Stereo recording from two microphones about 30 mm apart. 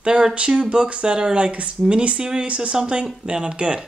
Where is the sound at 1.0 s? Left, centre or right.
Right.